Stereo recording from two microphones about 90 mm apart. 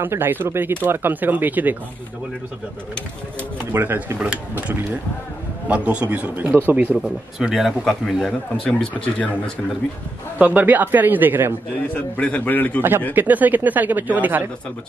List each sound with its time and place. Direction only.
0.0 s speech: 25° right (ahead or behind)
3.7 s speech: 25° right (ahead or behind)
7.0 s speech: 5° right (ahead or behind)
8.6 s a man's voice: 15° left (ahead or behind)
10.4 s speech: 20° right (ahead or behind)
11.9 s a man's voice: 15° left (ahead or behind)
13.1 s speech: 20° right (ahead or behind)